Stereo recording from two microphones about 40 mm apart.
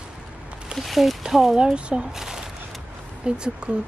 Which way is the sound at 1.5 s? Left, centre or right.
Right.